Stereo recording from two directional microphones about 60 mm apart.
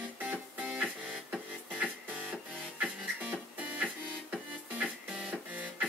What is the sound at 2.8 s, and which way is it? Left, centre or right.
Music, right.